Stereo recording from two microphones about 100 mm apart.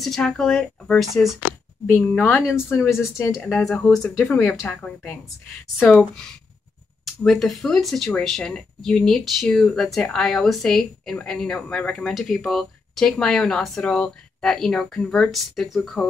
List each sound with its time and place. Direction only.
0.0 s speech: 5° left (ahead or behind)
2.7 s speech: 25° left (ahead or behind)
3.4 s speech: 5° left (ahead or behind)
7.1 s speech: 5° left (ahead or behind)